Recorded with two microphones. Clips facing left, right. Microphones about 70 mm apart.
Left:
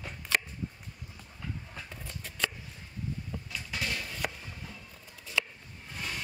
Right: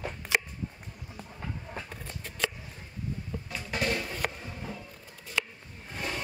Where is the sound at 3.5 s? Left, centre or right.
Right.